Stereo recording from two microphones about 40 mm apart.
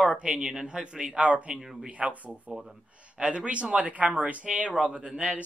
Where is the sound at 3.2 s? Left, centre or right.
Right.